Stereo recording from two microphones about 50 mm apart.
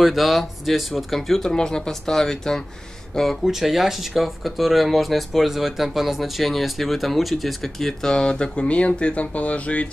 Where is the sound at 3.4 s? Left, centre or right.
Centre.